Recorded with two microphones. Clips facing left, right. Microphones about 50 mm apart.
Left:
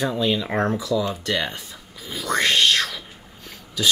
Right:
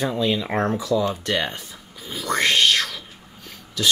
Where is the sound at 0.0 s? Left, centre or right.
Centre.